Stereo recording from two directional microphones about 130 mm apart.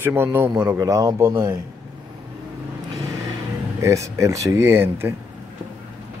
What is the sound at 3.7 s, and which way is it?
Speech, 25° right (ahead or behind).